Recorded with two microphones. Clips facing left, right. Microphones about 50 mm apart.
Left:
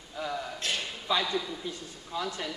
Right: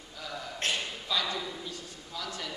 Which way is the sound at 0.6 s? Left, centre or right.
Right.